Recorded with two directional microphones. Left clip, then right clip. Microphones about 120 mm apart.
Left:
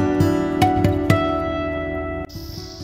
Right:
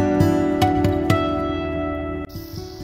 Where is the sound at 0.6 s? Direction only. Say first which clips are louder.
Left 1 dB; 20° left (ahead or behind).